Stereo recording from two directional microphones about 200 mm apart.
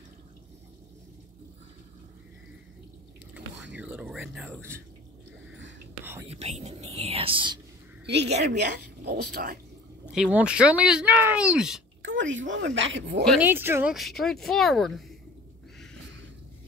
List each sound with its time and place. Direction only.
3.7 s speech: 5° right (ahead or behind)
6.2 s speech: 30° right (ahead or behind)
8.5 s a woman's voice: 55° right (ahead or behind)
10.1 s speech: 5° right (ahead or behind)
12.0 s speech: 70° right (ahead or behind)
13.4 s speech: 10° right (ahead or behind)
13.9 s speech: centre (ahead or behind)